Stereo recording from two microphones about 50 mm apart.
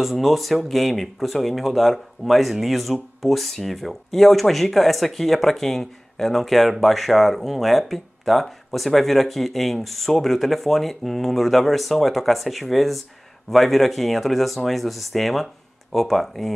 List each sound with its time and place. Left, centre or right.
0.0 s speech: centre